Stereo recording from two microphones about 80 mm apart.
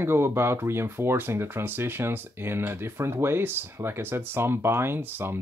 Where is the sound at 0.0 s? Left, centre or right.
Right.